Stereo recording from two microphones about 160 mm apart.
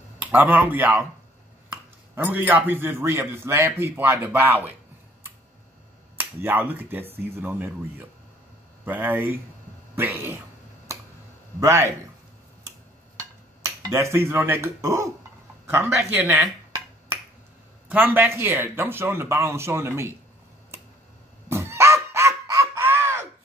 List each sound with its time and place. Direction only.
0.2 s a man's voice: 10° right (ahead or behind)
6.1 s a man's voice: 10° right (ahead or behind)
11.6 s a man's voice: 15° right (ahead or behind)
13.2 s a man's voice: 15° right (ahead or behind)
17.8 s a man's voice: 10° right (ahead or behind)
21.5 s a sound: 15° right (ahead or behind)